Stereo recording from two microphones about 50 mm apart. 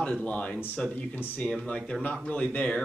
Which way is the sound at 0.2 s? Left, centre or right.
Left.